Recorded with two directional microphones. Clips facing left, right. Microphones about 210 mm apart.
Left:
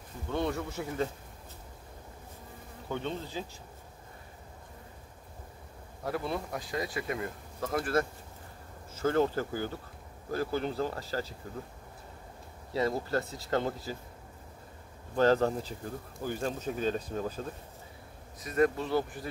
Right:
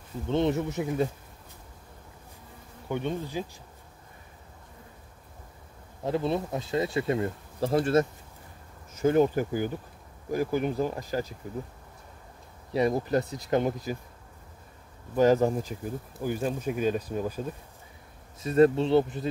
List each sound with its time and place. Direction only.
0.3 s speech: 20° right (ahead or behind)
2.9 s speech: 15° right (ahead or behind)
6.0 s speech: 20° right (ahead or behind)
12.7 s speech: 20° right (ahead or behind)
15.1 s speech: 10° right (ahead or behind)
18.4 s speech: 30° right (ahead or behind)